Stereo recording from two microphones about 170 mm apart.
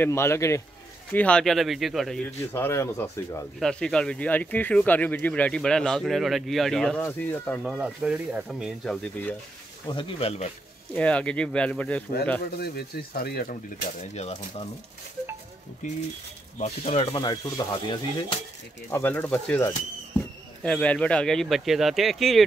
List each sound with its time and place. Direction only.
0.0 s speech: 15° left (ahead or behind)
2.5 s speech: 15° left (ahead or behind)
3.5 s speech: 5° left (ahead or behind)
7.7 s speech: 5° right (ahead or behind)
9.8 s speech: 30° left (ahead or behind)
11.0 s speech: 5° left (ahead or behind)
12.4 s speech: 65° left (ahead or behind)
14.0 s speech: 40° left (ahead or behind)
15.8 s speech: 45° left (ahead or behind); by 22.4 s centre (ahead or behind)